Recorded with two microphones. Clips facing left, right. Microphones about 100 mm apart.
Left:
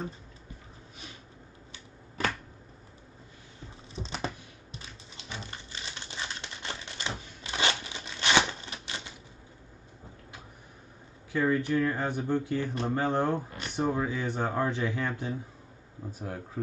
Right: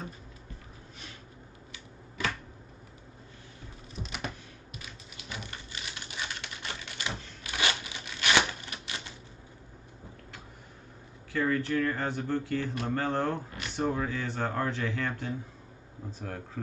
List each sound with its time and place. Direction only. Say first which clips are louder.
3.9 s typing: left 3 dB; 30° left (ahead or behind)
4.7 s typewriter: left 1 dB; 25° left (ahead or behind)
7.5 s a sound: left 1 dB; 25° left (ahead or behind)
11.3 s speech: left 2 dB; 20° left (ahead or behind)